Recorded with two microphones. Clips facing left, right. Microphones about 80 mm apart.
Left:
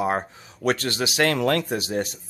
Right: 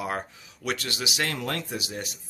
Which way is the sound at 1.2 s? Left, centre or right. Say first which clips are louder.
Left 12 dB; left.